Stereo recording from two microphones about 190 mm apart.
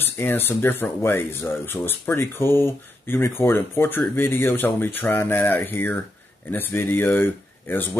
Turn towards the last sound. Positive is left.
turn(degrees=10)  # may be behind; listen again after turning